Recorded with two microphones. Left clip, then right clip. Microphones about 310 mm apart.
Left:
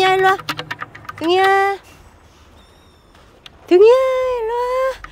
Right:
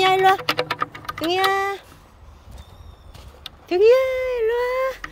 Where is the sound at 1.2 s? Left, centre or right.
Centre.